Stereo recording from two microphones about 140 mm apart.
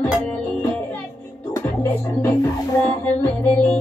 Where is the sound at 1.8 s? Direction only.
15° left (ahead or behind).